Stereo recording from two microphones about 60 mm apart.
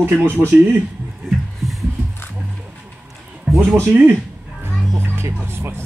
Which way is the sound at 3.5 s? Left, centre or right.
Centre.